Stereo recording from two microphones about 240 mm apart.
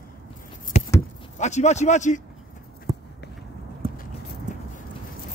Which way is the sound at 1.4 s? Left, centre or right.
Left.